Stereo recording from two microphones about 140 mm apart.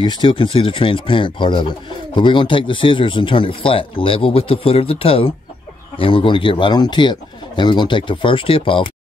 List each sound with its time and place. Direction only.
0.0 s speech: 35° left (ahead or behind)